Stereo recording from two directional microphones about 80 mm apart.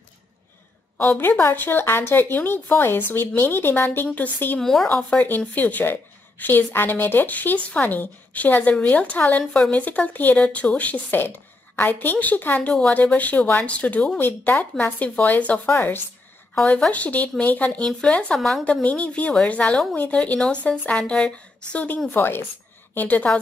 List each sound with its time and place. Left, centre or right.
0.9 s speech: left
4.6 s speech: centre
5.5 s a woman's voice: left
9.4 s speech: centre
9.7 s speech: centre
16.5 s speech: centre
22.1 s speech: left